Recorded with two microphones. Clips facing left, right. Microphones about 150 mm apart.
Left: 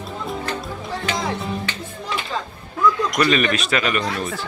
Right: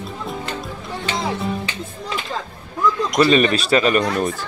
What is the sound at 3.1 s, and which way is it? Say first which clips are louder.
Speech: right 4 dB; 30° right (ahead or behind).